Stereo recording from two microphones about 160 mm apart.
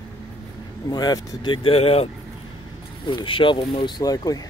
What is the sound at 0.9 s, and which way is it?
Speech, 25° left (ahead or behind).